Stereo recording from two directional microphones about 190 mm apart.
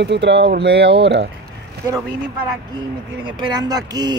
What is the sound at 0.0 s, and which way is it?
Speech, 65° right (ahead or behind).